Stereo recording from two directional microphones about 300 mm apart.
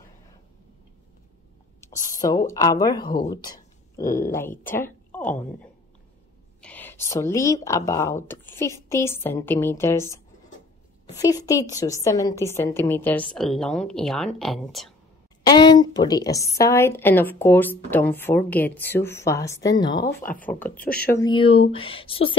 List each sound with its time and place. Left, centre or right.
1.8 s speech: centre
4.7 s a sound: centre
6.6 s a woman's voice: centre
15.4 s a woman's voice: centre
20.7 s speech: left
21.0 s a woman's voice: centre